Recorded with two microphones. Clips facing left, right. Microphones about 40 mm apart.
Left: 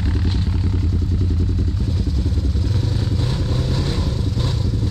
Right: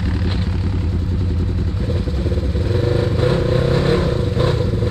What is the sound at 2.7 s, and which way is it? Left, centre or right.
Vehicle, right.